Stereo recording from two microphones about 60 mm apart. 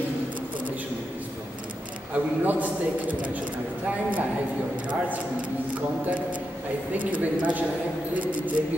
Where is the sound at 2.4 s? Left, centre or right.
Right.